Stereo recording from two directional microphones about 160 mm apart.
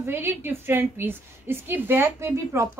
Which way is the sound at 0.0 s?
15° right (ahead or behind).